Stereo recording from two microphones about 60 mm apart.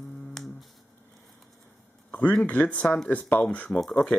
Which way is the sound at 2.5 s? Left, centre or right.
Left.